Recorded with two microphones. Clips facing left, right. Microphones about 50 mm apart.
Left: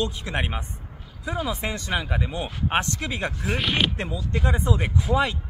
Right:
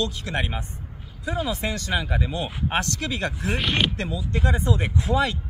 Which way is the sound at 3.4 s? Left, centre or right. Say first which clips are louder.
Even; centre.